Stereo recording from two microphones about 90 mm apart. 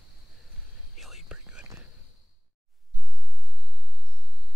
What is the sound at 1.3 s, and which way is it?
Whispering, 15° right (ahead or behind).